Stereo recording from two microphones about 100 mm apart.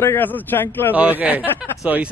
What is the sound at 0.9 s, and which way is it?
Speech, 15° right (ahead or behind).